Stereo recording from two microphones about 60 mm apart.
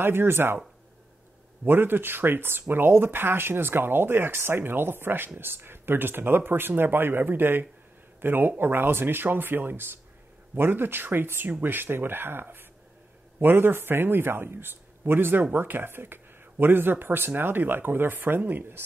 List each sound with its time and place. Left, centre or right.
0.0 s speech: right
1.6 s speech: right